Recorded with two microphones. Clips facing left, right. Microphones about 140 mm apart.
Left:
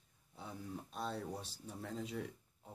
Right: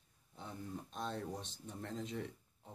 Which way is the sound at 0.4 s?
5° left (ahead or behind).